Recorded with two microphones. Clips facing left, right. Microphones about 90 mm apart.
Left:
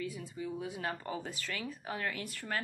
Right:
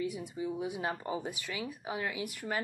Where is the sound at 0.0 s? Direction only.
20° right (ahead or behind).